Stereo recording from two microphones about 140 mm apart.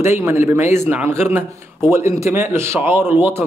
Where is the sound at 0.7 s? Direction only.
15° right (ahead or behind).